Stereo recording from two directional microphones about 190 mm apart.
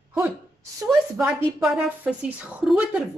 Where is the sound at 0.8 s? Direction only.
5° right (ahead or behind).